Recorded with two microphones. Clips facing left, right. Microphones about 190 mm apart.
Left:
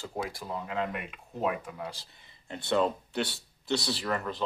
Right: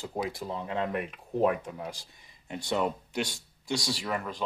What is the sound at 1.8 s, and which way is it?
Speech, 15° right (ahead or behind).